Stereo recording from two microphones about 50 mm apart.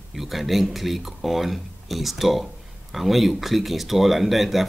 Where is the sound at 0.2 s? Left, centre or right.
Centre.